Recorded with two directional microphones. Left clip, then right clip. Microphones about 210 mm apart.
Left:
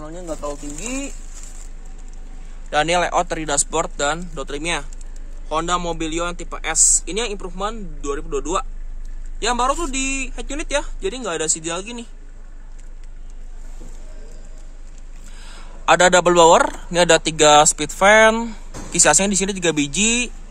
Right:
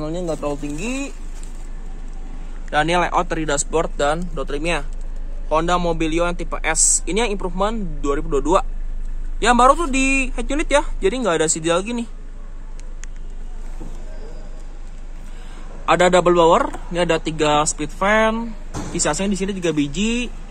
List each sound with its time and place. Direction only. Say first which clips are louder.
0.1 s a man's voice: right 1 dB; 15° right (ahead or behind)
2.7 s a man's voice: even; 15° left (ahead or behind); by 12.1 s 15° right (ahead or behind)
15.8 s speech: left 1 dB; 25° left (ahead or behind)